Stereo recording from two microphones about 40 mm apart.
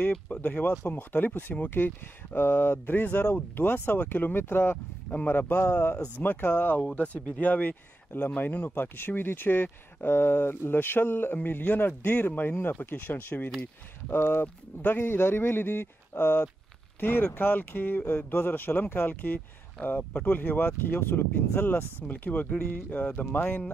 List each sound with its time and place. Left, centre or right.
0.4 s speech: left
2.3 s speech: left
3.0 s speech: left
3.5 s speech: left
5.3 s speech: left
6.2 s speech: left
7.0 s speech: left
11.4 s speech: left
12.4 s speech: left
14.0 s speech: left
22.0 s speech: left